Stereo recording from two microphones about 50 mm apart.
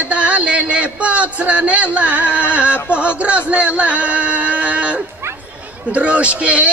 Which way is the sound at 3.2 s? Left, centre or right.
Right.